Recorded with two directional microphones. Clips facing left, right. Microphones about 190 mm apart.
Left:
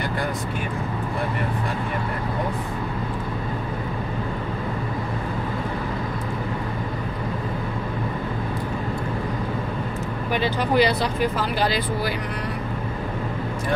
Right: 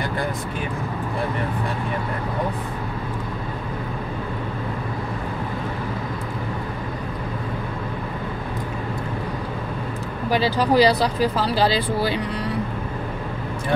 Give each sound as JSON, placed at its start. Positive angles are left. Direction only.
{"t": 10.3, "sound": "speech", "side_deg": -35}